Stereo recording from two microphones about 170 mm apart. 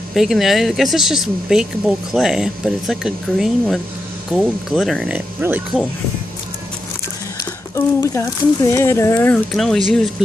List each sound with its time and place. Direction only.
0.1 s speech: centre (ahead or behind)
7.7 s speech: 20° left (ahead or behind)
9.5 s speech: centre (ahead or behind)